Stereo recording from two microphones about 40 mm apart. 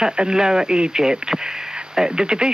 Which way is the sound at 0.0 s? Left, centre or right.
Centre.